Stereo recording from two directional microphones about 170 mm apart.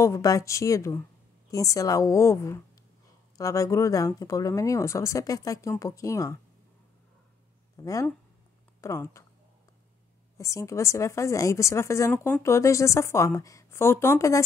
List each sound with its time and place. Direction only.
0.0 s a woman's voice: 20° left (ahead or behind)
7.7 s a woman's voice: 20° left (ahead or behind)
10.3 s a woman's voice: 15° left (ahead or behind)